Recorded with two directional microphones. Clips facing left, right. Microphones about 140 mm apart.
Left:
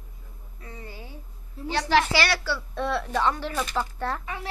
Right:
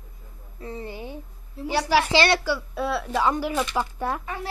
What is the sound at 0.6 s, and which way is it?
Speech, 30° right (ahead or behind).